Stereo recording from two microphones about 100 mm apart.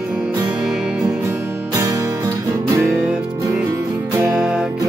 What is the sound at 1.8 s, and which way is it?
Music, 35° right (ahead or behind).